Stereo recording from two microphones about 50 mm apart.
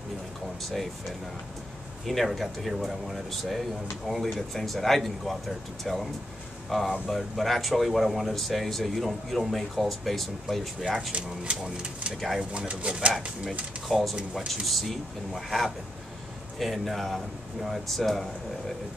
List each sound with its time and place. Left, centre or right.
2.0 s speech: centre
11.1 s speech: right
13.8 s speech: centre
14.5 s speech: centre